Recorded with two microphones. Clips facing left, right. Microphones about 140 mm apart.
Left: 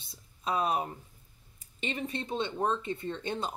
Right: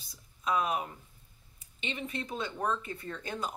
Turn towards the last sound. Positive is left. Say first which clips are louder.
# left 3 dB
turn(degrees=25)  # may be behind; listen again after turning